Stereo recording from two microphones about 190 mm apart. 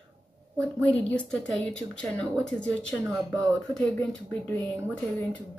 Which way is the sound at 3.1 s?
15° right (ahead or behind).